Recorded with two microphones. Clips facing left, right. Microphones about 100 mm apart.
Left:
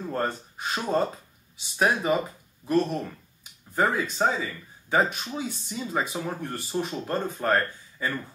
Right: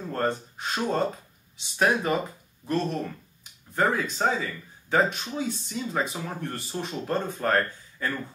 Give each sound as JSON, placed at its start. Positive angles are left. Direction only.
{"t": 0.1, "sound": "speech", "side_deg": 5}